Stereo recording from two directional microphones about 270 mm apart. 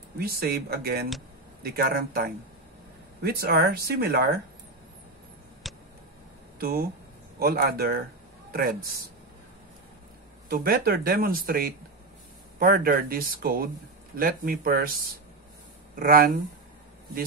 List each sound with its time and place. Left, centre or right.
0.2 s speech: right
5.6 s a sound: centre
6.6 s speech: right
10.5 s speech: right